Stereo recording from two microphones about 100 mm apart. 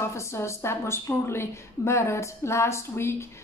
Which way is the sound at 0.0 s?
30° left (ahead or behind).